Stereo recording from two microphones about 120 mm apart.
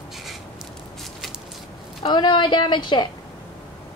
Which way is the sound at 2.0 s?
40° left (ahead or behind).